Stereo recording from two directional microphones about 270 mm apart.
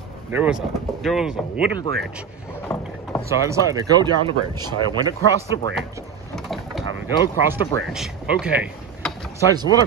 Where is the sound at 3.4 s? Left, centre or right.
Centre.